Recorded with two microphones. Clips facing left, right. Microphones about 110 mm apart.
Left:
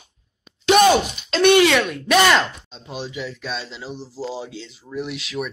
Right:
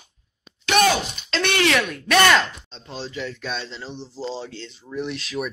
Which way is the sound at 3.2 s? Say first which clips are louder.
Right 3 dB; 5° left (ahead or behind).